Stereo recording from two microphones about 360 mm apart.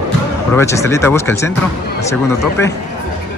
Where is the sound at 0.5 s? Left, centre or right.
Centre.